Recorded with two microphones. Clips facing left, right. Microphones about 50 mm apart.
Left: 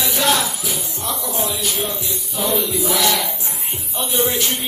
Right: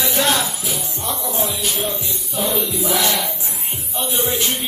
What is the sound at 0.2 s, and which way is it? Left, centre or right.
Music, centre.